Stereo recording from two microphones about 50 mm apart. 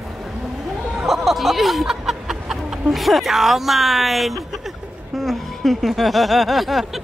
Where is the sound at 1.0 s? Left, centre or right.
Centre.